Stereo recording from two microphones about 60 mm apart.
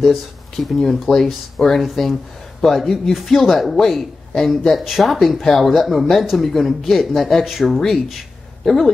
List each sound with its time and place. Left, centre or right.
0.0 s speech: centre